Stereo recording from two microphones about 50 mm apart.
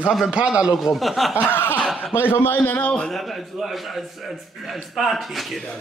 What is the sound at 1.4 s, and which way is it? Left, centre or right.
Snicker, left.